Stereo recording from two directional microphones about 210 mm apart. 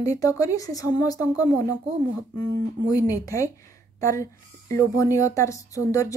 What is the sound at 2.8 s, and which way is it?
A woman's voice, 15° left (ahead or behind).